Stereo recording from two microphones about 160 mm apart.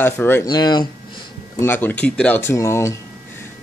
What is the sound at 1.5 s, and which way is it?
Speech, 10° left (ahead or behind).